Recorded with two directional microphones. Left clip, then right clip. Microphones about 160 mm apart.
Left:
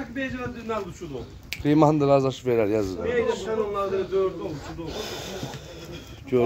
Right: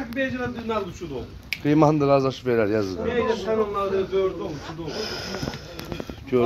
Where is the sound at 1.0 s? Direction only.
15° right (ahead or behind).